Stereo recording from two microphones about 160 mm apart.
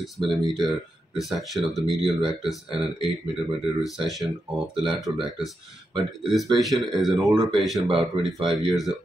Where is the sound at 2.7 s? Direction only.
35° right (ahead or behind).